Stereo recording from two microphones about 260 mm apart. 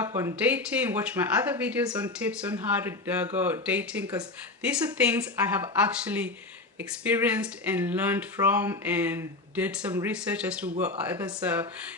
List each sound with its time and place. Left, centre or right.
0.0 s a sound: centre
0.4 s speech: centre
10.7 s speech: right
11.1 s speech: centre